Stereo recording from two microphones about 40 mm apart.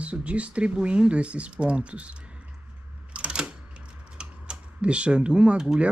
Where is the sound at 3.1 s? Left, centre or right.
Right.